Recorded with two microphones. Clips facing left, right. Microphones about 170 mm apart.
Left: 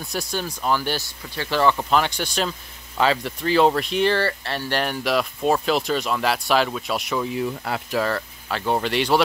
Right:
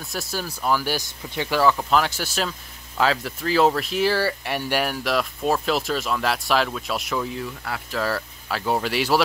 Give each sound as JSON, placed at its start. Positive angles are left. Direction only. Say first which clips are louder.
{"t": 0.0, "sound": "speech", "louder": "left 2 dB", "side_deg": 0}
{"t": 1.0, "sound": "speech", "louder": "right 2 dB", "side_deg": -20}
{"t": 1.6, "sound": "speech", "louder": "even", "side_deg": 0}
{"t": 7.4, "sound": "speech", "louder": "left 5 dB", "side_deg": 25}
{"t": 8.0, "sound": "speech", "louder": "left 1 dB", "side_deg": -5}